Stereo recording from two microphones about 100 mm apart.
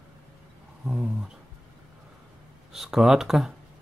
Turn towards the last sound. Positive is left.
turn(degrees=-5)  # may be behind; listen again after turning